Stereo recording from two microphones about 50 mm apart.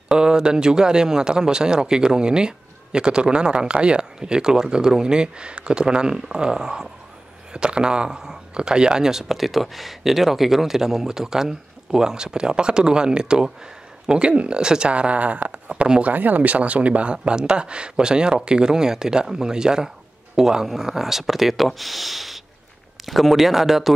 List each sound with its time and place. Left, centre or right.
0.1 s speech: centre